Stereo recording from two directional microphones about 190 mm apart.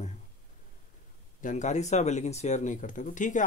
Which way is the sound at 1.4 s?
40° left (ahead or behind).